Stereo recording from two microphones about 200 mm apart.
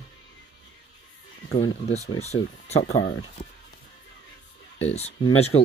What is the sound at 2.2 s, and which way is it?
Speech, 35° left (ahead or behind).